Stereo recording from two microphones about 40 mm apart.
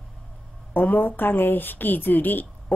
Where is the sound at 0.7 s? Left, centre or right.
Left.